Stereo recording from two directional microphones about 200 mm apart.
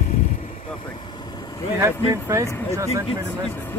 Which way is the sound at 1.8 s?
15° right (ahead or behind).